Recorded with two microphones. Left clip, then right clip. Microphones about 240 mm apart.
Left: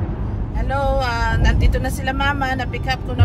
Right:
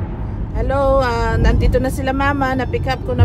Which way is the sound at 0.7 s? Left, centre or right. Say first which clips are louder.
Right 5 dB; right.